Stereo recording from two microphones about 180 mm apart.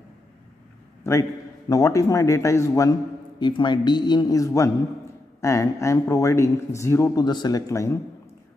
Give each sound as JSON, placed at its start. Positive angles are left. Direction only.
{"t": 1.7, "sound": "a man's voice", "side_deg": 20}